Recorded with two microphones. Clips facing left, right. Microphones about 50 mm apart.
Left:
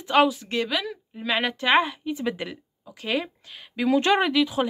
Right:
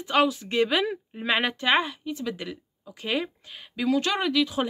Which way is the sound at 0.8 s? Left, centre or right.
Centre.